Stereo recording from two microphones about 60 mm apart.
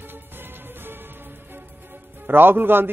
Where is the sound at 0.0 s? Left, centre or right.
Right.